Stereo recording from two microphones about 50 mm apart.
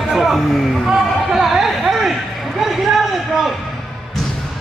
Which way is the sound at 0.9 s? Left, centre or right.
Centre.